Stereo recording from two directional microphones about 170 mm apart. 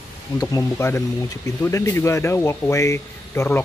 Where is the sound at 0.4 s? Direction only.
20° left (ahead or behind).